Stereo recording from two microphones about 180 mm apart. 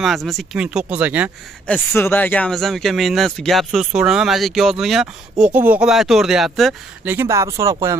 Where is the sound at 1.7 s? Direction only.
10° left (ahead or behind).